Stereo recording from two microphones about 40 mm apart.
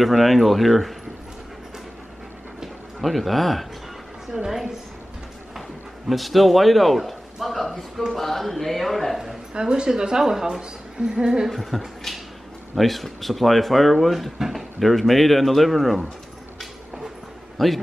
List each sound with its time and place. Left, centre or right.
0.0 s speech: centre
2.6 s a man's voice: centre
6.0 s a man's voice: centre
9.2 s a sound: centre
9.6 s a woman's voice: right
11.7 s a sound: centre
12.7 s speech: centre
17.6 s speech: centre